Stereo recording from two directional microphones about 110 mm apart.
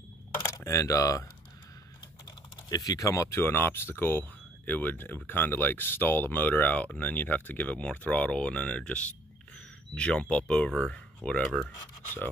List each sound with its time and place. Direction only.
0.5 s speech: 30° left (ahead or behind)
2.7 s speech: 35° left (ahead or behind); by 11.6 s 10° left (ahead or behind)